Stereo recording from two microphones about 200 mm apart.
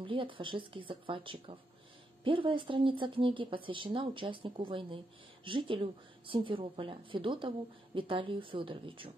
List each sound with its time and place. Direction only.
0.0 s speech: 25° right (ahead or behind)